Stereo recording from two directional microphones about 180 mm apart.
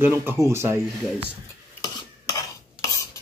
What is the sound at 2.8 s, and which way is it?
Stir, 15° left (ahead or behind).